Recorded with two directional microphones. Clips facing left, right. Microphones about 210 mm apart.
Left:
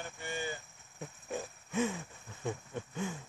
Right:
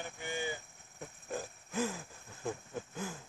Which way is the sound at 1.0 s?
Centre (ahead or behind).